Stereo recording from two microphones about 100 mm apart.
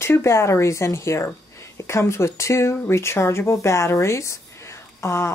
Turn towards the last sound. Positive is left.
turn(degrees=30)  # may be behind; listen again after turning